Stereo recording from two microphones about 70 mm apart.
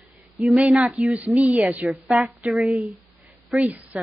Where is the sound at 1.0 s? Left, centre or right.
Centre.